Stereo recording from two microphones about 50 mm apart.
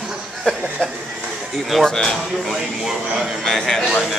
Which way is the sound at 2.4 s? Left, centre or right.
Centre.